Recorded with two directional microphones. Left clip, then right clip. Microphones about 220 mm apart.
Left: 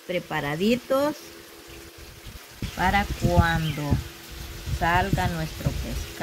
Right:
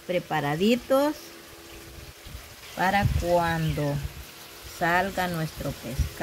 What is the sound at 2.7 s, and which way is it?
Speech, 15° right (ahead or behind).